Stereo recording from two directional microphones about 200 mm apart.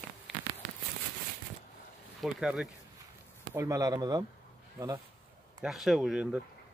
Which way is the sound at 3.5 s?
15° right (ahead or behind).